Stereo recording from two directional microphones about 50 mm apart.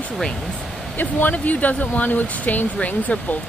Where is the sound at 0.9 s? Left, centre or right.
Left.